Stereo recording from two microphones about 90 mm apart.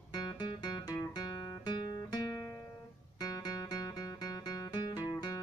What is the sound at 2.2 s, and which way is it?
Music, 35° left (ahead or behind).